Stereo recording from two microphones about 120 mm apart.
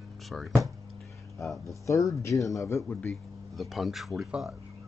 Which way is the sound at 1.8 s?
25° left (ahead or behind).